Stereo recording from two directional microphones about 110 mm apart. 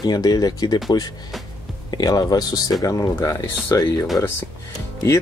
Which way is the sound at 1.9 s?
35° left (ahead or behind).